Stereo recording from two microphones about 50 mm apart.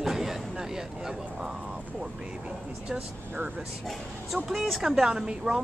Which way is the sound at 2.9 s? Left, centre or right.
Right.